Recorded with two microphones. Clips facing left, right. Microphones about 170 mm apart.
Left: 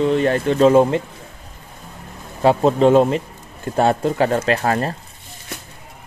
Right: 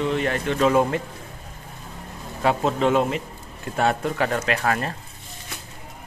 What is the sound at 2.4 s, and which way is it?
Speech, 35° left (ahead or behind).